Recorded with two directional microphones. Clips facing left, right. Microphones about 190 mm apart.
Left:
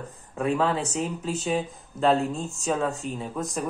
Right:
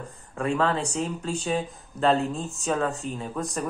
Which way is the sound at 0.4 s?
Centre (ahead or behind).